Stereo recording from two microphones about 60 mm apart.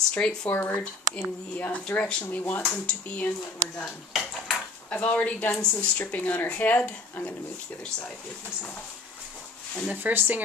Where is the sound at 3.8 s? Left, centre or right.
Centre.